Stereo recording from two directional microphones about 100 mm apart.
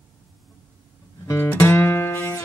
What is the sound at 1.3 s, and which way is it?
Music, 20° left (ahead or behind).